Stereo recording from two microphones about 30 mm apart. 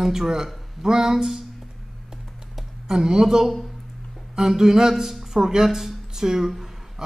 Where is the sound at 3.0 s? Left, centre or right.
Right.